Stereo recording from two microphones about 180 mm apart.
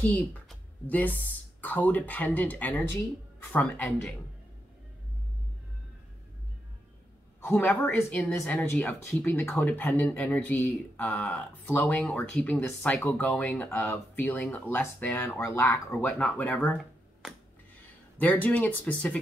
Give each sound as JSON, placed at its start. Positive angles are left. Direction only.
{"t": 0.0, "sound": "speech", "side_deg": 10}
{"t": 7.4, "sound": "speech", "side_deg": 10}
{"t": 18.2, "sound": "speech", "side_deg": 10}